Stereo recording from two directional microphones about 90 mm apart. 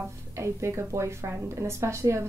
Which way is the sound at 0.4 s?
30° right (ahead or behind).